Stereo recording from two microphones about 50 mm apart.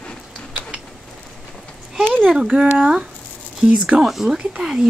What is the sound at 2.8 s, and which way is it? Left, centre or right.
Speech, centre.